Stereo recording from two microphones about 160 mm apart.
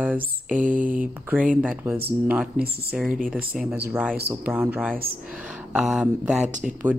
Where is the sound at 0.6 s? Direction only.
55° right (ahead or behind).